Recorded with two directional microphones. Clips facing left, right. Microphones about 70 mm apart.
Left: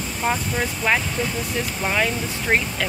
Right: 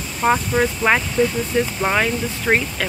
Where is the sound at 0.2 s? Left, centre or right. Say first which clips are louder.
Right 6 dB; right.